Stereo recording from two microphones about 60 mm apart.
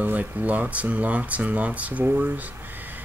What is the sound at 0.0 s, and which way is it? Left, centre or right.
Speech, right.